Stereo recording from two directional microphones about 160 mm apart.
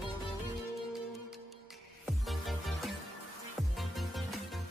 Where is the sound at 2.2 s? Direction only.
Centre (ahead or behind).